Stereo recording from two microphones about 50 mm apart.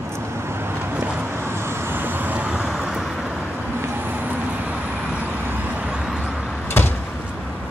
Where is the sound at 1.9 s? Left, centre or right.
Right.